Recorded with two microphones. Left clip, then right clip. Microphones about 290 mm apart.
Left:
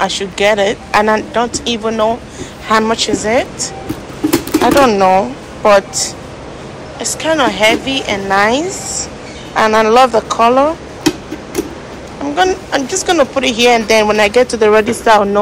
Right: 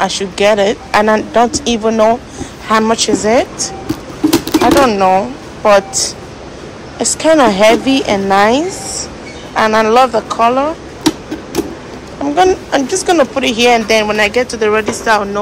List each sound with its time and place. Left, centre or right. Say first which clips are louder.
0.0 s speech: right 1 dB; centre
7.0 s speech: right 4 dB; centre
12.4 s speech: right 2 dB; centre